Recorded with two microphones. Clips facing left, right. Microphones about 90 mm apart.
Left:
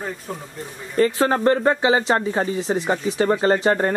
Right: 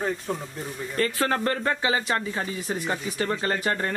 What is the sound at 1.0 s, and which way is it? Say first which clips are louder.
Speech: left 7 dB; 20° left (ahead or behind).